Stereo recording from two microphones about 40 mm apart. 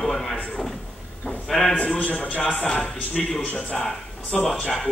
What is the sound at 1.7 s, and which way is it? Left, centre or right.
Speech, left.